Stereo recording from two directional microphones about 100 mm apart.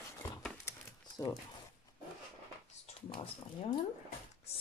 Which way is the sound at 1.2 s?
35° left (ahead or behind).